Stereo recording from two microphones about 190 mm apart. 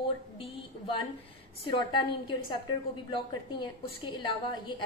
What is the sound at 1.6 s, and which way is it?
A woman's voice, 25° left (ahead or behind).